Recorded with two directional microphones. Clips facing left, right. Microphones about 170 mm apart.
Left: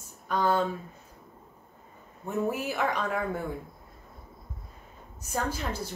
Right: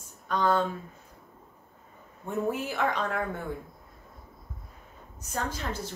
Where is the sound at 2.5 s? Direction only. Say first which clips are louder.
Even; 10° left (ahead or behind).